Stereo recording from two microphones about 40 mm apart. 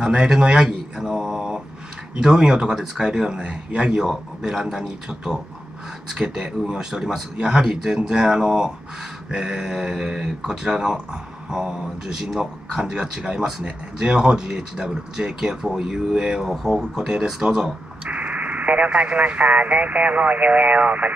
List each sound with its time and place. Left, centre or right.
0.0 s mantra: centre
2.1 s speech: centre
4.0 s speech: centre
18.0 s speech: right